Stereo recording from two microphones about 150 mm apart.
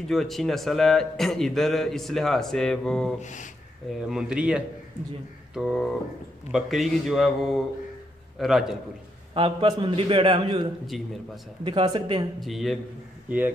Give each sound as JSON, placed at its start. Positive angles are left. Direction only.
{"t": 0.1, "sound": "a man's voice", "side_deg": 0}
{"t": 3.2, "sound": "speech", "side_deg": 55}
{"t": 3.9, "sound": "a man's voice", "side_deg": -5}
{"t": 9.3, "sound": "a man's voice", "side_deg": -35}
{"t": 12.4, "sound": "a man's voice", "side_deg": 0}